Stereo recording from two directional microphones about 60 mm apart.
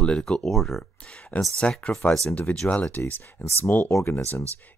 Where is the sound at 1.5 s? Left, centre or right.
Centre.